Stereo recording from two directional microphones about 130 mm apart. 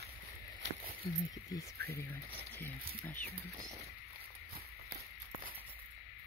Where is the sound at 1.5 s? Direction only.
15° left (ahead or behind).